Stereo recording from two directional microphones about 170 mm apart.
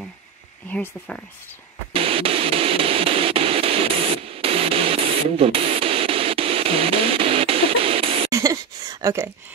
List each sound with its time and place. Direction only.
0.7 s speech: 5° left (ahead or behind)
1.9 s a sound: 35° right (ahead or behind)
8.3 s speech: 20° right (ahead or behind)